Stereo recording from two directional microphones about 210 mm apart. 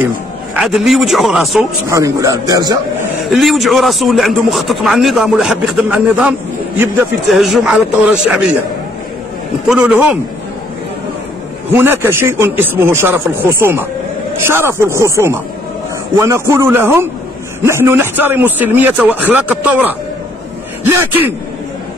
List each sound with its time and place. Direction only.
0.6 s speech: centre (ahead or behind)
1.9 s a man's voice: 15° right (ahead or behind)
3.3 s speech: centre (ahead or behind)
9.7 s a man's voice: 10° right (ahead or behind)
11.7 s a man's voice: 10° right (ahead or behind)